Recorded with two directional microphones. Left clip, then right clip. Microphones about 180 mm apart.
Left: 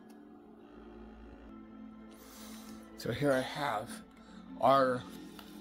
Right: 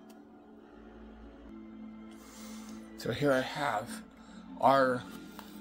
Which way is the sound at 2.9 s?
10° left (ahead or behind).